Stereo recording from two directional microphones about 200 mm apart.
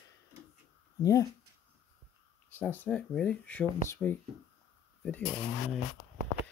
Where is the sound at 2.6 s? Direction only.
10° left (ahead or behind).